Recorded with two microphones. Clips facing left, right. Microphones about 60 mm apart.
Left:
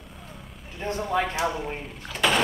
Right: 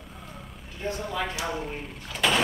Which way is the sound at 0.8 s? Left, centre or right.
Left.